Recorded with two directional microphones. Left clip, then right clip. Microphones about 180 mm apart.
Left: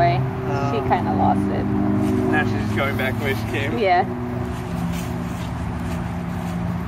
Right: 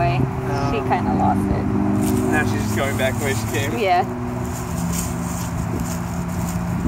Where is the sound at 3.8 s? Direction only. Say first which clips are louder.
Even; 5° left (ahead or behind).